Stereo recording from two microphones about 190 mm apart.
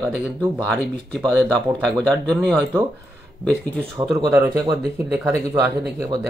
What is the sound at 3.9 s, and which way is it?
Speech, 20° right (ahead or behind).